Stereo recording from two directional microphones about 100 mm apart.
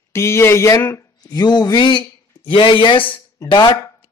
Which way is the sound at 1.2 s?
45° left (ahead or behind).